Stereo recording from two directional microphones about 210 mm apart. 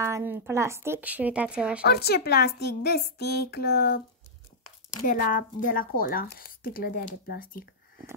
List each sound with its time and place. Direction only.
0.0 s a woman's voice: 10° right (ahead or behind)
1.8 s speech: 50° left (ahead or behind)
5.0 s speech: 40° left (ahead or behind)